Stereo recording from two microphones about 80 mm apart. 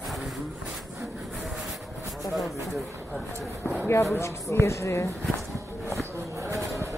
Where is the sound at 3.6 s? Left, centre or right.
Left.